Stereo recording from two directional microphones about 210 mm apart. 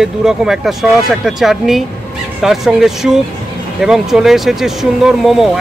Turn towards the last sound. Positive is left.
turn(degrees=0)  # may be behind; listen again after turning